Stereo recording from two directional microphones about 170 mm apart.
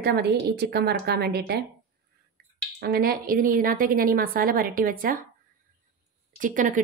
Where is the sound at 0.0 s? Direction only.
70° right (ahead or behind).